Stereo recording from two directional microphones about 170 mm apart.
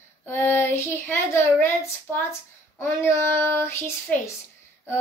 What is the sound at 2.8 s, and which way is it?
A child's voice, 15° left (ahead or behind).